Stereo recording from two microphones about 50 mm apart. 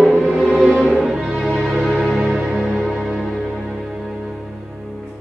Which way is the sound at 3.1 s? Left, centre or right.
Centre.